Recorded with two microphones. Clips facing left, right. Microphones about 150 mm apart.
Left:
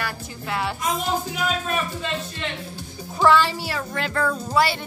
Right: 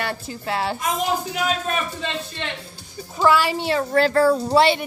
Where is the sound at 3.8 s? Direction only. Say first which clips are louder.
Right 9 dB; 40° right (ahead or behind).